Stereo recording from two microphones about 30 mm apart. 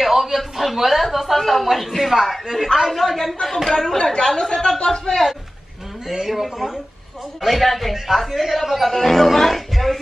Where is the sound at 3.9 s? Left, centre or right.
Left.